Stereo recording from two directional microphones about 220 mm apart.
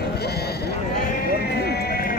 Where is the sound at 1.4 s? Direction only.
45° left (ahead or behind).